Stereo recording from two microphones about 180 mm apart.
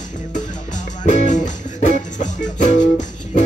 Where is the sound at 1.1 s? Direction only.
45° left (ahead or behind).